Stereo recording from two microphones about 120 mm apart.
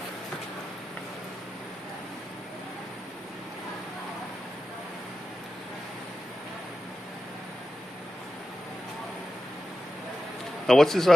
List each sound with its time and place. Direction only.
10.7 s a man's voice: 5° left (ahead or behind)